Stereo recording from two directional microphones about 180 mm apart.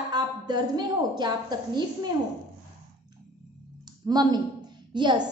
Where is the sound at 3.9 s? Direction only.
20° right (ahead or behind).